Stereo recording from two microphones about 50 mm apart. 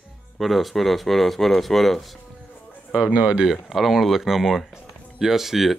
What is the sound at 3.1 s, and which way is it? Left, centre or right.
Speech, right.